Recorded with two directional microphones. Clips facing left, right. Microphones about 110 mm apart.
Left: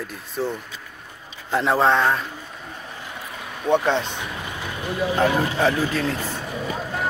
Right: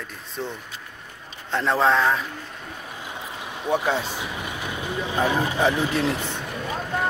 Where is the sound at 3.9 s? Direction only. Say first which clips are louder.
Left 2 dB; 5° right (ahead or behind); by 6.2 s 25° right (ahead or behind).